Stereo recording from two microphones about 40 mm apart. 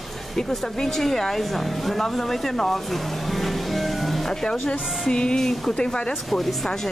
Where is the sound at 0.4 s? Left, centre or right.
Centre.